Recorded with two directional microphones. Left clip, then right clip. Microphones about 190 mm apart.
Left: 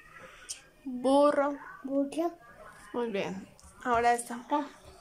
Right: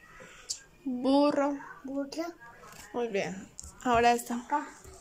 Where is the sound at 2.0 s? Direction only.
15° left (ahead or behind).